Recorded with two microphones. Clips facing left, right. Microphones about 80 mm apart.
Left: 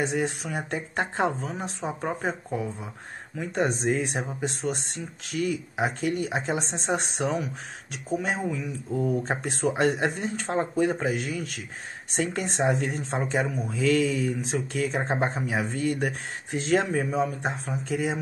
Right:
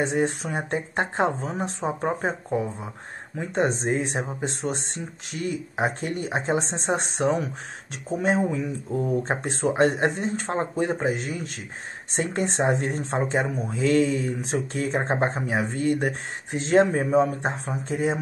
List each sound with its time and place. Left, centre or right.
0.0 s speech: right